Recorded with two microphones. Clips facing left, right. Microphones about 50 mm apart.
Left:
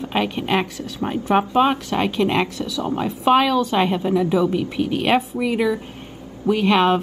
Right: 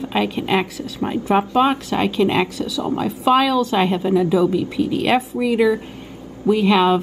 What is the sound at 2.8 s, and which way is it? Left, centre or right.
A woman's voice, left.